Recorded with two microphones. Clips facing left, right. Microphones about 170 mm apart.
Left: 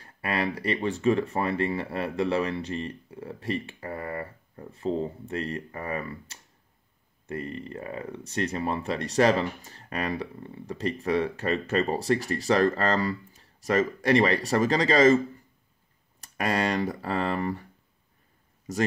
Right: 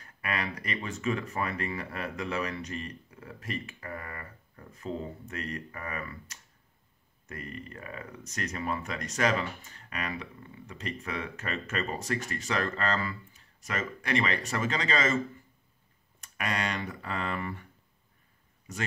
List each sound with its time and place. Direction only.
0.0 s speech: 30° left (ahead or behind)
16.2 s speech: 35° left (ahead or behind)
18.7 s speech: 35° left (ahead or behind)